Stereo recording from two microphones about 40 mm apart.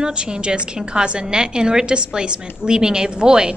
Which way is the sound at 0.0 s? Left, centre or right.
Right.